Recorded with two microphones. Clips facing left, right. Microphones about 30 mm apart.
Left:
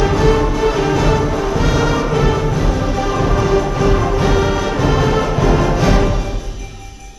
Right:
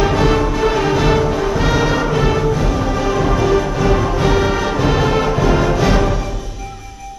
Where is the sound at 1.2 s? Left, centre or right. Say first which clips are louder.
Right 1 dB; centre.